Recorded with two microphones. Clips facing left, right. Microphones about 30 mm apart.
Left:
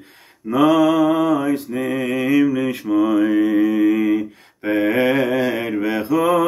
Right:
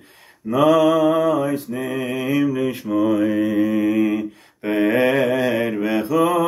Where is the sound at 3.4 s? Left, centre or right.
Left.